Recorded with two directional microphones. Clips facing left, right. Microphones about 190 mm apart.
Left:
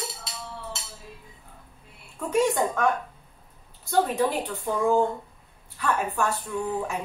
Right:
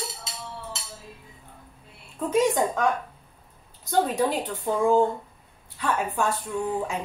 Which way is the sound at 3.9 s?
15° right (ahead or behind).